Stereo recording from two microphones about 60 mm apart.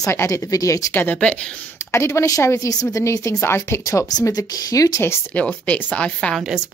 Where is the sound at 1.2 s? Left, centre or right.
Centre.